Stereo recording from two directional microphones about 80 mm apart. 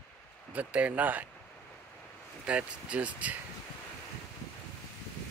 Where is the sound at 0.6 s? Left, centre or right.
Centre.